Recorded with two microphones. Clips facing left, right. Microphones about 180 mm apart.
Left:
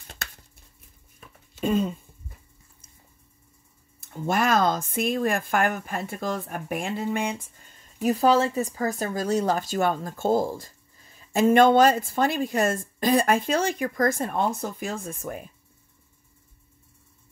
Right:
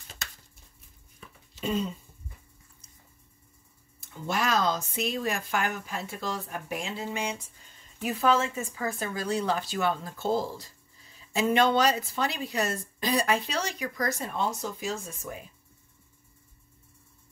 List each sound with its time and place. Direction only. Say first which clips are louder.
1.5 s a sound: left 6 dB; 50° left (ahead or behind)
4.0 s a woman's voice: left 5 dB; 50° left (ahead or behind)
8.0 s a woman's voice: left 5 dB; 40° left (ahead or behind); by 15.4 s 55° left (ahead or behind)